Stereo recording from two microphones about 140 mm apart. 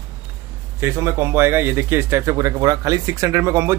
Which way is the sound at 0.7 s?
20° right (ahead or behind).